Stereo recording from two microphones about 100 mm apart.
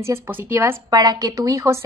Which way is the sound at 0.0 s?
25° right (ahead or behind).